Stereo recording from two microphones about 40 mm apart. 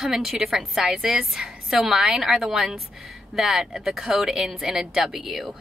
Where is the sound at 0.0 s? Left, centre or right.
Centre.